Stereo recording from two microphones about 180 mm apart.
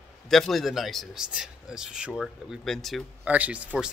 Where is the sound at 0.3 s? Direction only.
Centre (ahead or behind).